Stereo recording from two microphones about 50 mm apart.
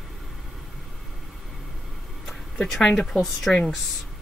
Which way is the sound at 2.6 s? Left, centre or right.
Centre.